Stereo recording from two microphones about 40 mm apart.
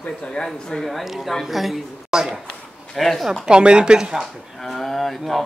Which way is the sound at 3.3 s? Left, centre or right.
Right.